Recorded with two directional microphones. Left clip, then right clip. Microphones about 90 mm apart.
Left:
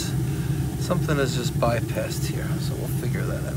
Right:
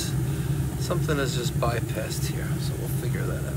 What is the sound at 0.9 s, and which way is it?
A man's voice, 30° right (ahead or behind).